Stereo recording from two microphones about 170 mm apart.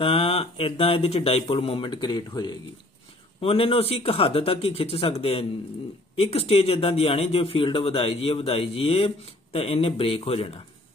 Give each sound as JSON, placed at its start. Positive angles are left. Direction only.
{"t": 0.0, "sound": "a man's voice", "side_deg": 35}